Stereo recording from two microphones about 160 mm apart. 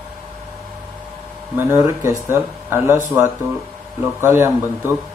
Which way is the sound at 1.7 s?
15° right (ahead or behind).